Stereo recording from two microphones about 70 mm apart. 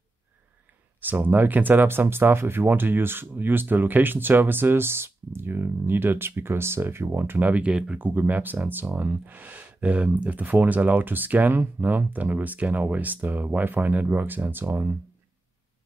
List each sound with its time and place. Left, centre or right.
1.0 s speech: right
8.0 s speech: right